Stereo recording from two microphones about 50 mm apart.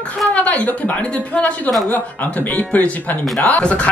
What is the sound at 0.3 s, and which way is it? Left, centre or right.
Speech, left.